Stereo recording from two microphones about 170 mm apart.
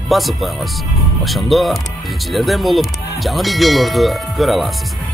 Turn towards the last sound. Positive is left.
turn(degrees=0)  # may be behind; listen again after turning